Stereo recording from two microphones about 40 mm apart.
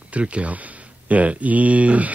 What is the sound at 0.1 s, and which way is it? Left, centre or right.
Speech, right.